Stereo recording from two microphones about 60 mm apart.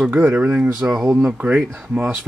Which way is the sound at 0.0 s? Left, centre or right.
Right.